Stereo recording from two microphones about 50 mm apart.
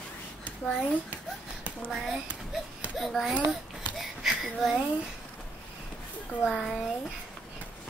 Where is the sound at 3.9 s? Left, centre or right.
Centre.